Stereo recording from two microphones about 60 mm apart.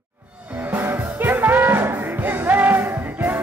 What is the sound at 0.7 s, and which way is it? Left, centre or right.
Music, right.